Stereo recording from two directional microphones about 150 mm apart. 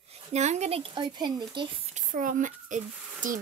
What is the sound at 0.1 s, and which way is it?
Speech, 50° right (ahead or behind).